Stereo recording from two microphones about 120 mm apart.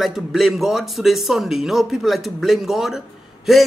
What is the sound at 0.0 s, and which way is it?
Speech, centre (ahead or behind).